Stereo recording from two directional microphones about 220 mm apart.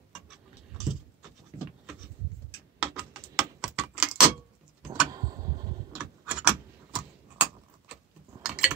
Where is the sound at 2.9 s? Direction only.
5° right (ahead or behind).